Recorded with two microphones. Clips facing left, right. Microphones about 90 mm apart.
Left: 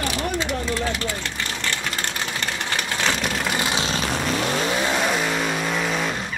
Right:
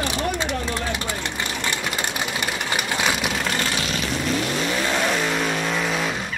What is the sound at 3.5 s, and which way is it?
Vehicle, 15° left (ahead or behind).